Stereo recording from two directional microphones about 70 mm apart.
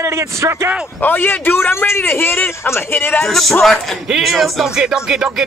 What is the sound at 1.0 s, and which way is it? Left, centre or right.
A man's voice, left.